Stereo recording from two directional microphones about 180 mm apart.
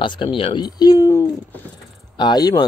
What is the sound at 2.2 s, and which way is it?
Speech, 20° left (ahead or behind).